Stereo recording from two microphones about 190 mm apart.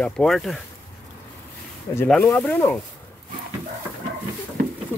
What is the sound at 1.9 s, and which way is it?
Speech, 10° left (ahead or behind).